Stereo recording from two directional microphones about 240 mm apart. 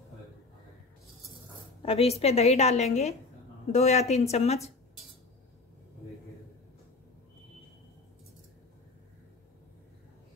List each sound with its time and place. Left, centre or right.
1.8 s a woman's voice: left